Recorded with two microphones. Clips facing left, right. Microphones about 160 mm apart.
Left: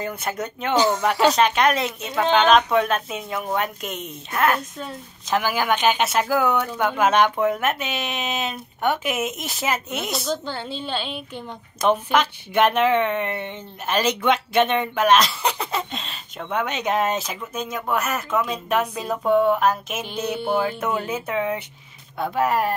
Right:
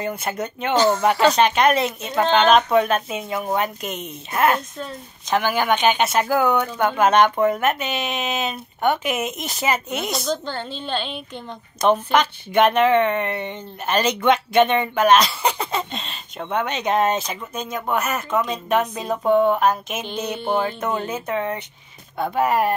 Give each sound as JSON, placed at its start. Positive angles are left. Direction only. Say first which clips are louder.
{"t": 0.0, "sound": "a woman's voice", "louder": "right 2 dB", "side_deg": 0}
{"t": 4.3, "sound": "a woman's voice", "louder": "right 2 dB", "side_deg": -15}
{"t": 4.7, "sound": "a woman's voice", "louder": "right 1 dB", "side_deg": 5}